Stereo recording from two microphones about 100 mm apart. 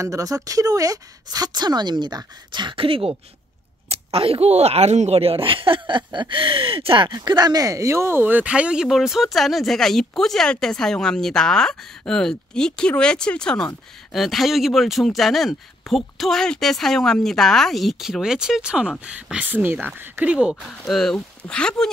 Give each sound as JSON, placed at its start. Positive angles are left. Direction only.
{"t": 0.0, "sound": "a woman's voice", "side_deg": -35}
{"t": 7.2, "sound": "speech", "side_deg": -45}
{"t": 20.8, "sound": "speech", "side_deg": 5}